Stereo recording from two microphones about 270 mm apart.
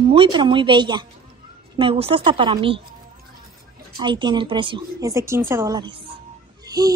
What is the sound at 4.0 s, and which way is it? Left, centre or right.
A child's voice, centre.